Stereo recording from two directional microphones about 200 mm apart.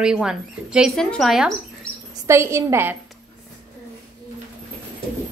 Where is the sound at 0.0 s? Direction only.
5° right (ahead or behind).